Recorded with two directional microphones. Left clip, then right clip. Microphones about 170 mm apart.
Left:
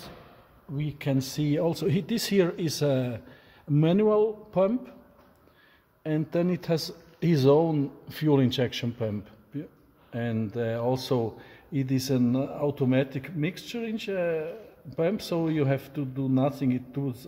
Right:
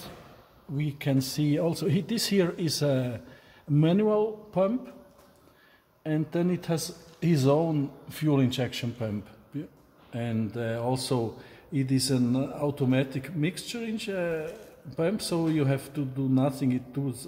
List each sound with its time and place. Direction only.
0.7 s speech: 30° left (ahead or behind); by 4.7 s 55° left (ahead or behind)
6.0 s speech: 55° left (ahead or behind)
10.1 s speech: 45° left (ahead or behind)